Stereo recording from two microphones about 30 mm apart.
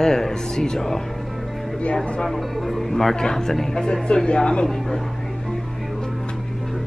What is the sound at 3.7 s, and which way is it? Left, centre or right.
Speech, left.